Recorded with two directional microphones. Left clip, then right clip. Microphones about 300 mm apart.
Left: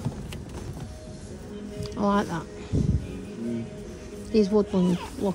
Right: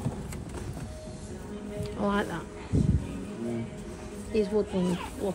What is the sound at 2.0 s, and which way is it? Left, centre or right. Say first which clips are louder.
Speech: left 4 dB; centre.